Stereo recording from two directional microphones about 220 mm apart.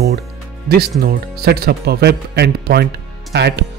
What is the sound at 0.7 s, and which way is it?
Speech, 45° right (ahead or behind).